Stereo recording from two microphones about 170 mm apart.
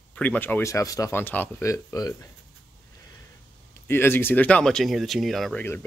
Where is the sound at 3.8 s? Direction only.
15° left (ahead or behind).